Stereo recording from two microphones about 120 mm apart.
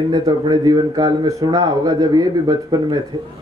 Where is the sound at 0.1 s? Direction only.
35° right (ahead or behind).